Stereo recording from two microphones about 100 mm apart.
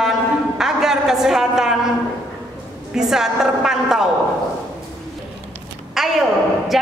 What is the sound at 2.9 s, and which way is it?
A woman's voice, 5° right (ahead or behind).